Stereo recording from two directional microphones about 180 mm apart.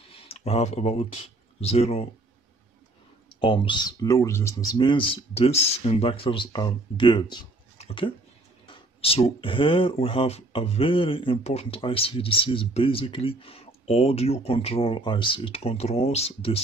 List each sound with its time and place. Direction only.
0.3 s speech: 35° left (ahead or behind)
3.3 s speech: 30° left (ahead or behind)